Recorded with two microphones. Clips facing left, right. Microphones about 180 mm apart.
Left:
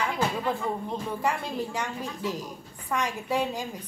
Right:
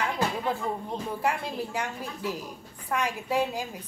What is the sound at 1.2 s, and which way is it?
A woman's voice, 10° right (ahead or behind).